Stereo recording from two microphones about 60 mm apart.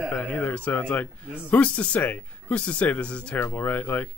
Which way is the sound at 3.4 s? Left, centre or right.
Left.